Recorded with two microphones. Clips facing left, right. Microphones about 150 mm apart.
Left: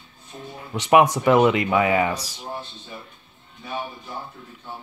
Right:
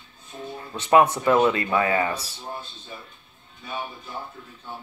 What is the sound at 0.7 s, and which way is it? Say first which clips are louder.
Speech: left 2 dB; 15° left (ahead or behind).